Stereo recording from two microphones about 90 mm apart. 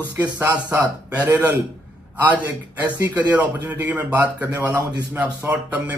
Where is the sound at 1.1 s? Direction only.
20° right (ahead or behind).